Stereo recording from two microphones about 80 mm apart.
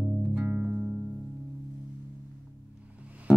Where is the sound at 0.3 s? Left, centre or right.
Right.